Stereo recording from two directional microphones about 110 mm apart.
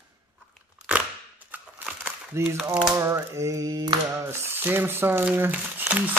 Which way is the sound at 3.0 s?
25° right (ahead or behind).